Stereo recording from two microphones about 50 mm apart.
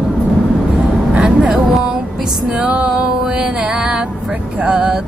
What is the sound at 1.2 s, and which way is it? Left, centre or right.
Vehicle, right.